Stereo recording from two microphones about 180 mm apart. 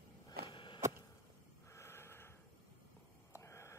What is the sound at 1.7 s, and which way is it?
Snort, 15° left (ahead or behind).